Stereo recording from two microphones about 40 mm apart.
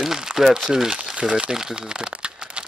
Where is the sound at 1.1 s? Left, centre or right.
Centre.